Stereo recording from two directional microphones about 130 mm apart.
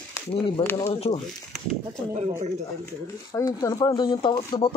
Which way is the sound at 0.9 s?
50° left (ahead or behind).